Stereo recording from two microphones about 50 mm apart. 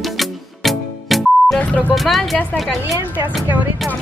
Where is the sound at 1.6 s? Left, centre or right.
Left.